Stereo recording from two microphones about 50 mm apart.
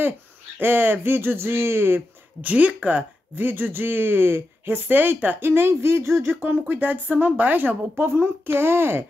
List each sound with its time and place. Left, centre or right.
0.6 s speech: right
2.4 s speech: right
6.2 s speech: right
8.1 s speech: right